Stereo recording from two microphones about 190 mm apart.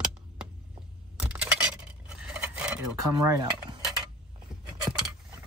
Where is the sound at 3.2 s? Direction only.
15° right (ahead or behind).